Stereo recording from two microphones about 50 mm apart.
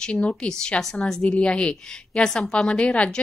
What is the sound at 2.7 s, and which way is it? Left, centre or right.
Speech, left.